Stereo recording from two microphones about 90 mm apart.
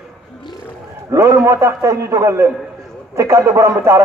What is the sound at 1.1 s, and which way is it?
A man's voice, 35° right (ahead or behind).